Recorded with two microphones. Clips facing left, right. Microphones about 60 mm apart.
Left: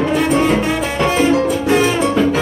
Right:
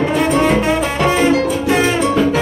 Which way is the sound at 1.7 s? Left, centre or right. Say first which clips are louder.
Left 1 dB; centre.